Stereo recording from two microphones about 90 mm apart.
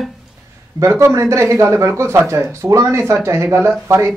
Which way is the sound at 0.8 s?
30° right (ahead or behind).